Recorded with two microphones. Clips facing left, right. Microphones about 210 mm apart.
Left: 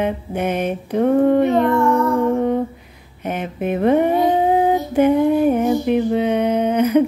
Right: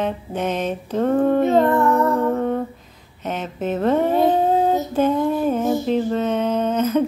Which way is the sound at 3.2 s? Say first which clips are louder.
Left 2 dB; 10° left (ahead or behind).